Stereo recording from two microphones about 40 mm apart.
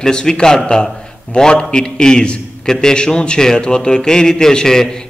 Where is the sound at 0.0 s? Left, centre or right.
Centre.